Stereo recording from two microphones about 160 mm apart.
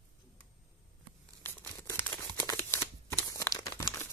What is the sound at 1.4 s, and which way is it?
Crumpling, 15° left (ahead or behind).